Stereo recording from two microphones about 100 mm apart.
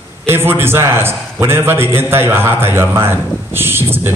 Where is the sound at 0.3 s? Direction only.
25° right (ahead or behind).